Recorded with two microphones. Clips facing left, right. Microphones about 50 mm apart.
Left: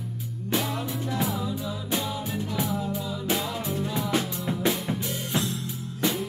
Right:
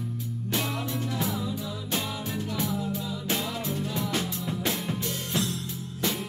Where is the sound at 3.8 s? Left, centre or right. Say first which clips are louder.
Left 2 dB; centre.